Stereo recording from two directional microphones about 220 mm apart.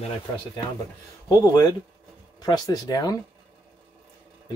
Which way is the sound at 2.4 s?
20° left (ahead or behind).